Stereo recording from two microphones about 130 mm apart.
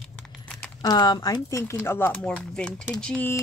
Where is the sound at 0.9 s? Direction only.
30° left (ahead or behind); by 3.3 s 10° left (ahead or behind).